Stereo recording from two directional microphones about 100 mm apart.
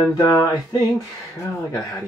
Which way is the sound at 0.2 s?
35° left (ahead or behind).